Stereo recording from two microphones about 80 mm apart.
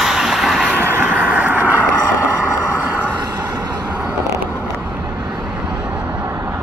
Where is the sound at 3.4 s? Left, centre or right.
Right.